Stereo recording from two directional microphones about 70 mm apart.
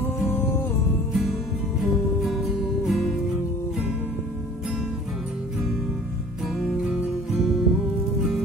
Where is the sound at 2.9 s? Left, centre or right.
Centre.